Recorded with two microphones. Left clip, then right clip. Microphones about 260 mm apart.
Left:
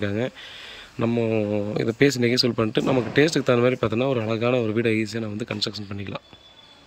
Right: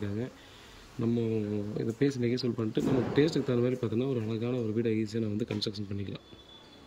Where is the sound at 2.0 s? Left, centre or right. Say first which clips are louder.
Left 10 dB; centre.